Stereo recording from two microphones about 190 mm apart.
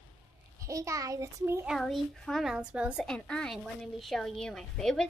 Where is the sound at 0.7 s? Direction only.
15° right (ahead or behind).